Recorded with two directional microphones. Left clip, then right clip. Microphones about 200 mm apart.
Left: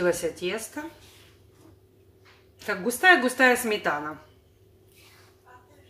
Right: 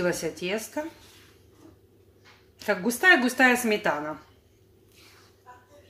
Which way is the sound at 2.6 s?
30° right (ahead or behind).